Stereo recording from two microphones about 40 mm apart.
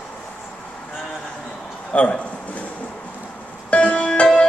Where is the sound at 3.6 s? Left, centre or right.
Left.